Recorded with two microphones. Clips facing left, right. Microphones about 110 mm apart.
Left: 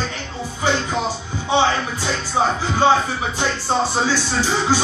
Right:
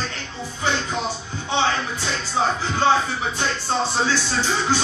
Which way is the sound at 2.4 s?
15° left (ahead or behind).